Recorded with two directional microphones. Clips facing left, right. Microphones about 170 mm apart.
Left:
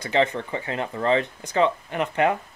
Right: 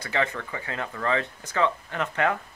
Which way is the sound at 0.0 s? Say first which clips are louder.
Left 5 dB; 25° left (ahead or behind).